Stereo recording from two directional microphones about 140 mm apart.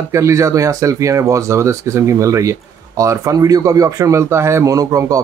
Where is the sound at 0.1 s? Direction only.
20° right (ahead or behind).